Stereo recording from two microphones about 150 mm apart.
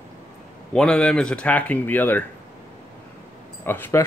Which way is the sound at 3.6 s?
15° left (ahead or behind).